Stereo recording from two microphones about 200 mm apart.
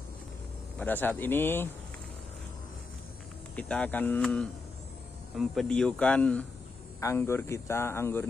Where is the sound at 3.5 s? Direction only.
5° left (ahead or behind).